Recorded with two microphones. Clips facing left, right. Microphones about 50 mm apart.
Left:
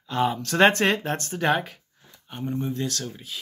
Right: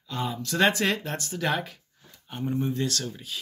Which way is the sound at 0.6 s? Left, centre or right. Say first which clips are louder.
Left 5 dB; left.